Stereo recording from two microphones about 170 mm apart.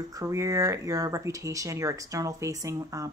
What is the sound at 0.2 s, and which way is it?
Speech, 20° right (ahead or behind).